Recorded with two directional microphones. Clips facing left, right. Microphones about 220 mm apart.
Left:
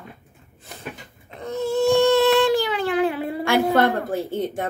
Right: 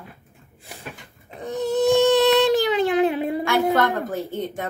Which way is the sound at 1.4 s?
15° right (ahead or behind).